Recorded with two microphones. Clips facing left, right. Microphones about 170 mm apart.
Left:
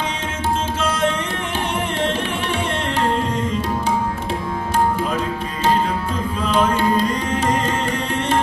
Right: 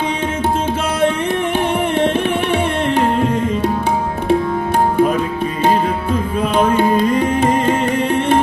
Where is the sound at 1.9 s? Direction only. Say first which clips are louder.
Right 6 dB; 55° right (ahead or behind).